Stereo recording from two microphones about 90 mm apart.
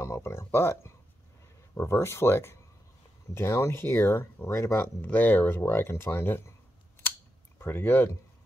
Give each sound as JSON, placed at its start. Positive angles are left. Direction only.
{"t": 0.0, "sound": "speech", "side_deg": 30}
{"t": 4.7, "sound": "speech", "side_deg": 20}
{"t": 7.5, "sound": "speech", "side_deg": 25}